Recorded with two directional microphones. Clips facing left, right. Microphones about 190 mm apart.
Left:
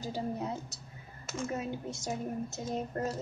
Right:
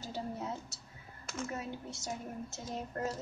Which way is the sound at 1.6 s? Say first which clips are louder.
Left 5 dB; 15° left (ahead or behind).